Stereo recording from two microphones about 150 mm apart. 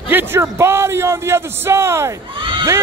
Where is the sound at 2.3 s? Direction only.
35° right (ahead or behind).